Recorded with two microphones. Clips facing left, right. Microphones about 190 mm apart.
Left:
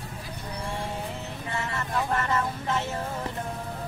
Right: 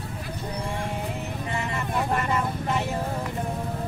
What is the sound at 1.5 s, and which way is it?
Speech, 15° right (ahead or behind).